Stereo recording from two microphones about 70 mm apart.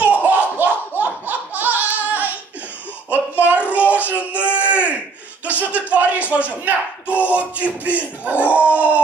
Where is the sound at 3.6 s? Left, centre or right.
Left.